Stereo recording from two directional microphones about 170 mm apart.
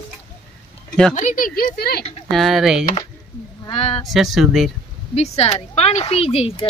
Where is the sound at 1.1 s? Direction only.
50° left (ahead or behind).